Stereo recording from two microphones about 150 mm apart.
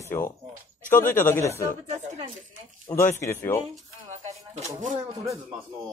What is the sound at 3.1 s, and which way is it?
Speech, 20° left (ahead or behind).